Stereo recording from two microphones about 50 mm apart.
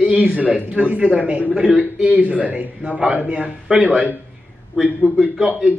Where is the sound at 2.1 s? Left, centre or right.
Right.